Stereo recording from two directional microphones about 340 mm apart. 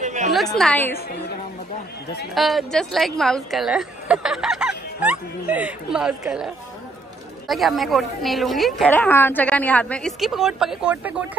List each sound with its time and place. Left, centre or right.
0.0 s a sound: right
0.5 s speech: centre
2.3 s speech: centre